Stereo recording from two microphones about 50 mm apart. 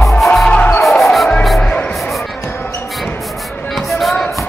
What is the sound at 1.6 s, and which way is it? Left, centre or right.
Music, centre.